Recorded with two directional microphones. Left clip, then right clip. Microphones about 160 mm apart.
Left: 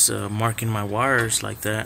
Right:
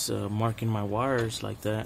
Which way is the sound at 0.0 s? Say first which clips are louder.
Left 7 dB; 25° right (ahead or behind).